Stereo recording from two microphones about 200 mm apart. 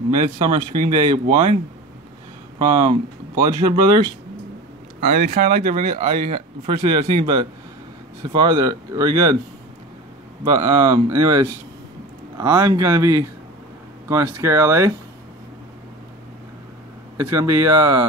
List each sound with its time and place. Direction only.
0.4 s speech: 20° right (ahead or behind)
2.8 s speech: 20° right (ahead or behind)
5.0 s speech: 40° right (ahead or behind); by 9.4 s 20° right (ahead or behind)
10.4 s speech: 20° right (ahead or behind)
17.4 s speech: 15° right (ahead or behind)